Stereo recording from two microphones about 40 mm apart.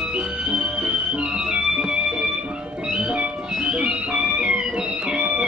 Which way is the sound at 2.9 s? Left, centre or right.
Right.